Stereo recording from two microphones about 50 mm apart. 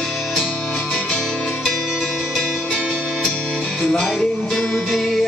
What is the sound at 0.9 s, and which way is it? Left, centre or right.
Music, left.